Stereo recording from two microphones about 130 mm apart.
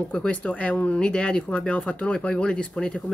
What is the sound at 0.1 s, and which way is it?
Speech, 10° left (ahead or behind).